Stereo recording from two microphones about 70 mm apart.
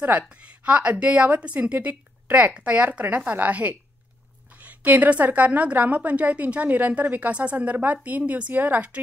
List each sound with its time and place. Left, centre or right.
0.3 s a woman's voice: centre